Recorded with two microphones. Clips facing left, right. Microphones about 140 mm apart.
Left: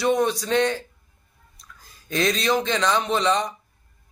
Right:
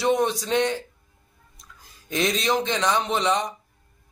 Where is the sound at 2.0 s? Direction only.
20° right (ahead or behind).